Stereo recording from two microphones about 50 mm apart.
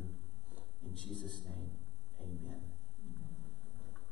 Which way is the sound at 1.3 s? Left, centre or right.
Centre.